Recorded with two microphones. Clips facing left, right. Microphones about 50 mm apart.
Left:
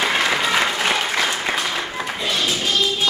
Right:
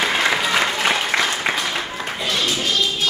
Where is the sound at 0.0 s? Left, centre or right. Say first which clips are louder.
Even; centre.